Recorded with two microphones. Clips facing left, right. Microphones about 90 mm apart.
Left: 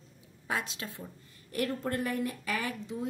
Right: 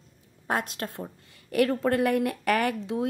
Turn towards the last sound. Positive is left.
turn(degrees=-80)